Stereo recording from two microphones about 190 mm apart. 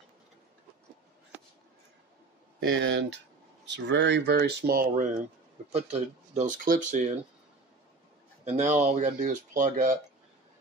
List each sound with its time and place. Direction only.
2.7 s speech: 70° right (ahead or behind); by 5.1 s 45° right (ahead or behind)
5.7 s speech: 35° right (ahead or behind)
8.5 s speech: 40° right (ahead or behind)